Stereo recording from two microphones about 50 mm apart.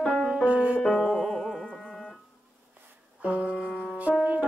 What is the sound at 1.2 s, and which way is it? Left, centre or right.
Carnatic music, centre.